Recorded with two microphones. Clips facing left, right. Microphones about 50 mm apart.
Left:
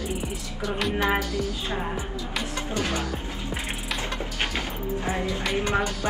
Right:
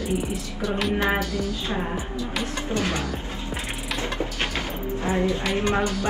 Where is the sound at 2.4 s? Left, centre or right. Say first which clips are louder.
Right 2 dB; centre.